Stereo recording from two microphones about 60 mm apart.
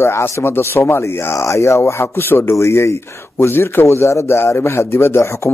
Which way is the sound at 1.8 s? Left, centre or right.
Left.